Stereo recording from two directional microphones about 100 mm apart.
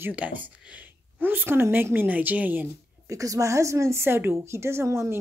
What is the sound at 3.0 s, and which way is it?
A woman's voice, 35° right (ahead or behind).